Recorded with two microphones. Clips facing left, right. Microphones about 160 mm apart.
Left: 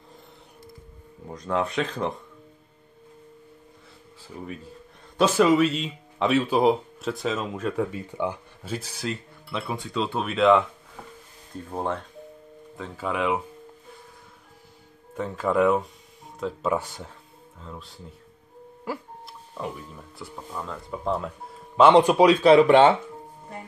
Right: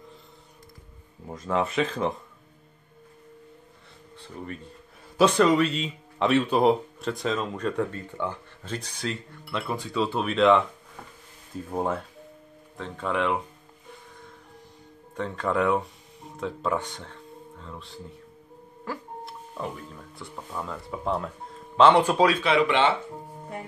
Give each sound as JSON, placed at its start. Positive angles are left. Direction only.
{"t": 1.3, "sound": "a man's voice", "side_deg": 0}
{"t": 4.2, "sound": "a man's voice", "side_deg": 5}
{"t": 12.7, "sound": "a man's voice", "side_deg": 5}
{"t": 15.1, "sound": "a man's voice", "side_deg": 5}
{"t": 22.4, "sound": "speech", "side_deg": 40}